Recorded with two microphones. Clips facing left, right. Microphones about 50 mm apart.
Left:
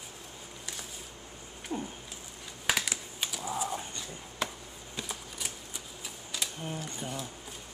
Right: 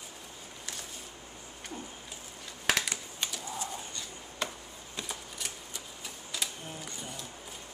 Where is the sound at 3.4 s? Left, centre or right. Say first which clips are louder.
Left 5 dB; centre.